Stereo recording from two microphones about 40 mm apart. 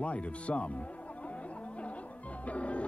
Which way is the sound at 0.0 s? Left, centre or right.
Left.